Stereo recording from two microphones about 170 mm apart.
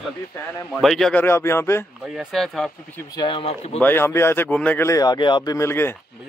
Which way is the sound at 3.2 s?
30° left (ahead or behind).